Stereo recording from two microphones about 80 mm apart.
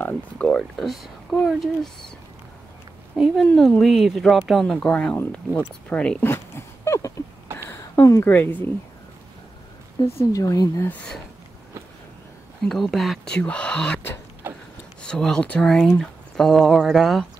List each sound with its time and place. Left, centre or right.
0.0 s a sound: centre
0.7 s speech: centre
3.4 s speech: centre
4.7 s speech: centre
5.1 s speech: left
6.2 s dog: left
7.5 s a sound: left
8.3 s speech: left
10.0 s speech: left
12.6 s speech: centre
13.4 s speech: centre
14.4 s a sound: right
15.0 s speech: centre